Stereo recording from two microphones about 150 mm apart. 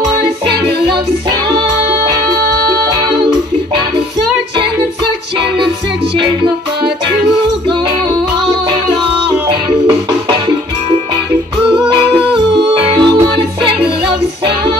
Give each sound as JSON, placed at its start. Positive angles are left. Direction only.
{"t": 12.7, "sound": "music", "side_deg": -30}